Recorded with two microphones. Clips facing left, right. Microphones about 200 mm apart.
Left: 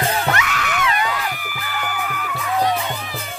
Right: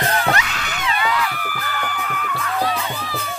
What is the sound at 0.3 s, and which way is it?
Music, 30° right (ahead or behind).